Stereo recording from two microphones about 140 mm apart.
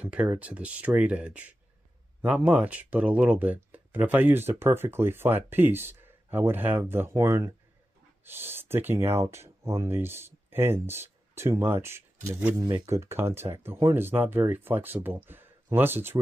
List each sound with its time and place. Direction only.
0.0 s speech: 10° right (ahead or behind)